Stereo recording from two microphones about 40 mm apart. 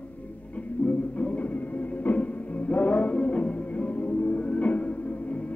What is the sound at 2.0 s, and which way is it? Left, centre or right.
Music, left.